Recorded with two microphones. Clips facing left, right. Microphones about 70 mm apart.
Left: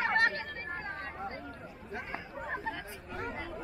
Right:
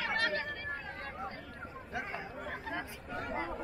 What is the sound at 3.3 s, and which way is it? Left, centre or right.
Speech, right.